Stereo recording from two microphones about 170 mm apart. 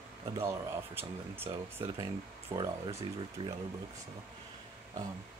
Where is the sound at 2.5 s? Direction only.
30° right (ahead or behind).